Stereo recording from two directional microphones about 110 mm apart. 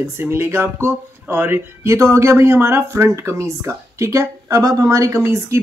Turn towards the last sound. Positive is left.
turn(degrees=-25)  # may be behind; listen again after turning